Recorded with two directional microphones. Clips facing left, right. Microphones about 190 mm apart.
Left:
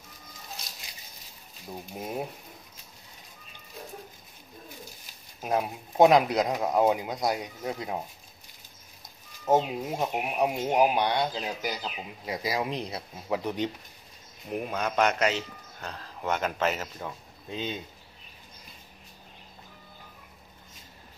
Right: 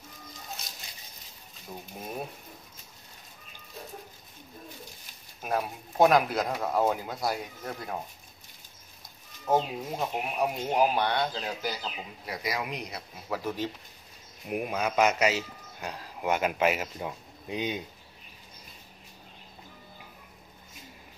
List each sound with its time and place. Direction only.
5.4 s speech: 20° left (ahead or behind)
9.5 s speech: 15° left (ahead or behind)
12.4 s speech: 30° left (ahead or behind)
14.5 s a man's voice: 10° right (ahead or behind)